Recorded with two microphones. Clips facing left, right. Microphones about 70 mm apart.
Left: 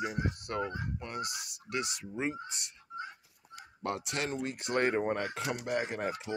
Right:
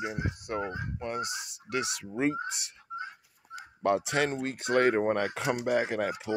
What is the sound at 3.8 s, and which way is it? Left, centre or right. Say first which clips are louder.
Speech: right 8 dB; right.